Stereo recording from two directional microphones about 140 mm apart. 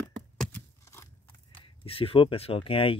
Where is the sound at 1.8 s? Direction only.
40° left (ahead or behind).